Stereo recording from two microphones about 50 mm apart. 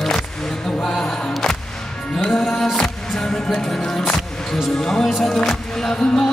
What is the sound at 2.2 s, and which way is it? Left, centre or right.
Music, centre.